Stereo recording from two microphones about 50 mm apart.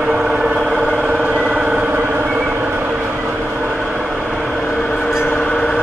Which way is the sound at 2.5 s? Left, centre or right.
Right.